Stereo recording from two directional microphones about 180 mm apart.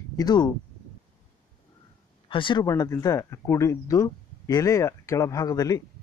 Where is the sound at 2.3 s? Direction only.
30° left (ahead or behind).